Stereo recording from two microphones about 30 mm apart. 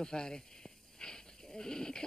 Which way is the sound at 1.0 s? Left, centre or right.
Left.